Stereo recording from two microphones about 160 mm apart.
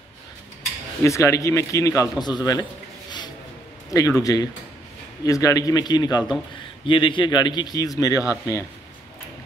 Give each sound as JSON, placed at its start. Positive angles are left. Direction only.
{"t": 1.0, "sound": "a man's voice", "side_deg": 20}
{"t": 3.9, "sound": "a man's voice", "side_deg": 20}